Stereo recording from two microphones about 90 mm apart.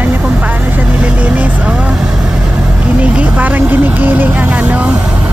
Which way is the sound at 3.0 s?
15° right (ahead or behind).